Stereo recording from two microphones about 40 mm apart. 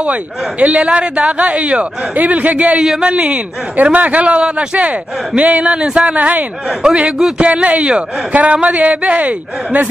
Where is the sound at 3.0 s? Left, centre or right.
Right.